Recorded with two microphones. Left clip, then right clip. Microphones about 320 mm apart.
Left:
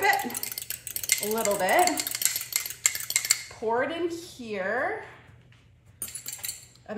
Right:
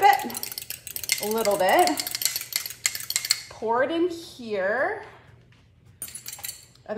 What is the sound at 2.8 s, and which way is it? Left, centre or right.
Cutlery, centre.